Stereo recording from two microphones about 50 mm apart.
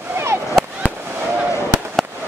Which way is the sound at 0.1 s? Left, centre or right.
Right.